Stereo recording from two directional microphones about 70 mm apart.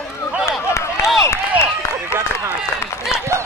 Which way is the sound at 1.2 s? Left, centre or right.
Left.